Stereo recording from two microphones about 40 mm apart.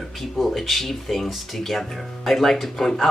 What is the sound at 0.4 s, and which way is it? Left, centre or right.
Speech, centre.